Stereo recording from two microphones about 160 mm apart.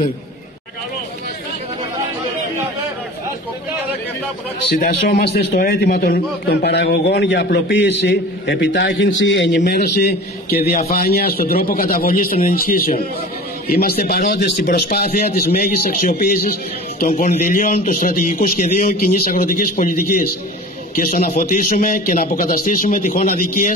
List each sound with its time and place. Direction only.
4.6 s a man's voice: 75° left (ahead or behind); by 23.7 s 55° left (ahead or behind)